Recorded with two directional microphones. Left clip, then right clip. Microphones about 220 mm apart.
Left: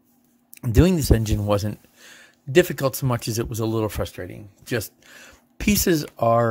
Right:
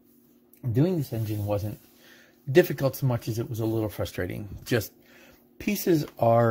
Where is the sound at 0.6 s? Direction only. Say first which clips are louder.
Left 6 dB; 30° left (ahead or behind).